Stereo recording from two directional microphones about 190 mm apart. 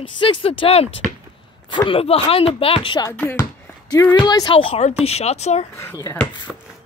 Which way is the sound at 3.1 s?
10° left (ahead or behind).